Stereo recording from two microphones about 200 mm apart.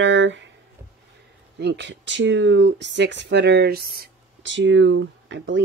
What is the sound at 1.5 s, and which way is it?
Speech, 60° right (ahead or behind).